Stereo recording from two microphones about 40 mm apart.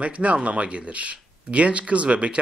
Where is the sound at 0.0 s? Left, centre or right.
Right.